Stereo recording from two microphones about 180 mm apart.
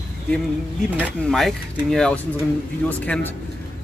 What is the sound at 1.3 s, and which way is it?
Speech, centre (ahead or behind).